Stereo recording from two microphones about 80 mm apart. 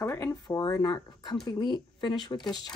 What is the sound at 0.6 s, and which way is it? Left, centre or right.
Speech, left.